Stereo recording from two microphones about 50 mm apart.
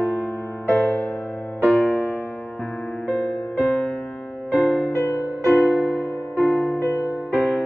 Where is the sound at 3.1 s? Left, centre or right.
Centre.